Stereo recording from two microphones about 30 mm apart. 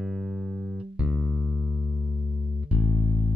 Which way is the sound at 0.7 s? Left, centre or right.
Right.